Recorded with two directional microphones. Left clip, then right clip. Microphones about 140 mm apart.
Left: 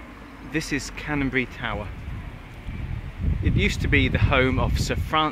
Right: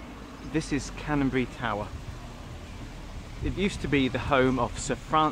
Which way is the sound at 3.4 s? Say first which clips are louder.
Left 5 dB; 5° left (ahead or behind).